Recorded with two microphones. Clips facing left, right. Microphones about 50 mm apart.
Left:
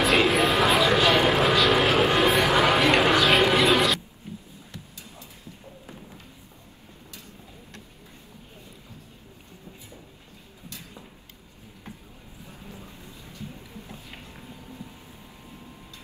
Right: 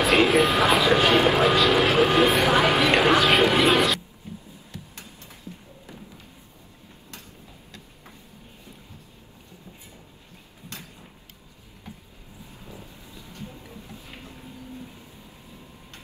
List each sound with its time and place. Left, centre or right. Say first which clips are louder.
0.0 s vehicle: right 2 dB; centre
12.8 s vehicle: even; left
13.3 s a sound: right 1 dB; right